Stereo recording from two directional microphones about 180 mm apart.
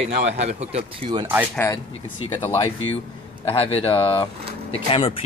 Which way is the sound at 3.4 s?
30° left (ahead or behind).